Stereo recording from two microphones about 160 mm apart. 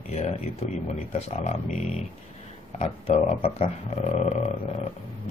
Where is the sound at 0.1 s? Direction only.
40° left (ahead or behind).